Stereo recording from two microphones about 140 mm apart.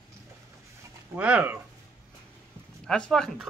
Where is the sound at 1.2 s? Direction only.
10° right (ahead or behind).